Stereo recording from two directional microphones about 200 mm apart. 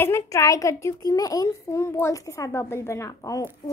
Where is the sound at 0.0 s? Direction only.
15° left (ahead or behind).